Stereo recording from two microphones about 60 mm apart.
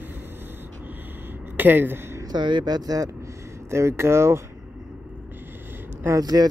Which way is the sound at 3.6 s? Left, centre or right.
Right.